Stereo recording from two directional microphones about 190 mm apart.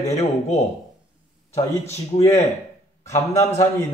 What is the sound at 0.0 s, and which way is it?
A man's voice, 35° left (ahead or behind).